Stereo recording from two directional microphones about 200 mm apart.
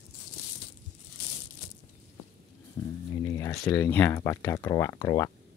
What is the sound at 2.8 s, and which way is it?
Speech, 15° left (ahead or behind).